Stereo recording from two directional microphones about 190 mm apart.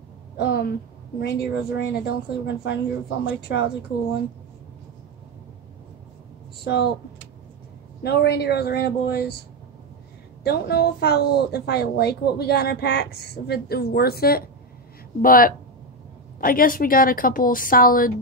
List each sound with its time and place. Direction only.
0.4 s a woman's voice: 55° left (ahead or behind)
6.6 s speech: 60° left (ahead or behind)
8.0 s a woman's voice: 60° left (ahead or behind)
10.4 s a woman's voice: 55° left (ahead or behind)